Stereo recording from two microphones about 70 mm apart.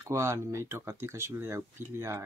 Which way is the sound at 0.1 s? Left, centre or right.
Right.